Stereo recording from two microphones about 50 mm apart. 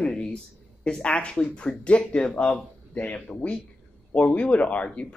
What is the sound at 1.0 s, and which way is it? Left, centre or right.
Speech, left.